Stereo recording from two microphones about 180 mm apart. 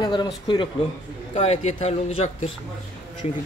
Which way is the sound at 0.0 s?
25° left (ahead or behind).